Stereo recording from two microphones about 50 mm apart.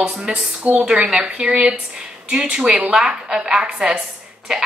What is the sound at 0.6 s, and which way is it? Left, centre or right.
Speech, right.